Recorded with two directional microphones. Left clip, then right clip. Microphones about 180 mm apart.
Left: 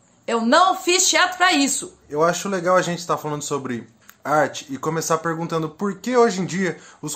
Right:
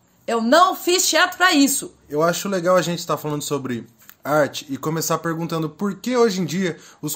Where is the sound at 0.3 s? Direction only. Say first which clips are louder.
Right 1 dB; 40° right (ahead or behind).